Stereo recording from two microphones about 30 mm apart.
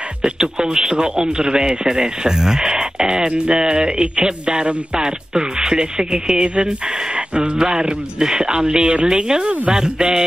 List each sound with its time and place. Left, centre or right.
0.2 s speech: right
7.5 s speech: right